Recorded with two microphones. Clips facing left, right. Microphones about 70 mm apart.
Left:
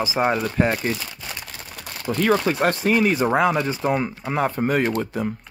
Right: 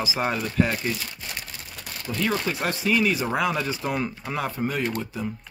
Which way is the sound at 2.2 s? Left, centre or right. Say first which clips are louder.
Left 7 dB; left.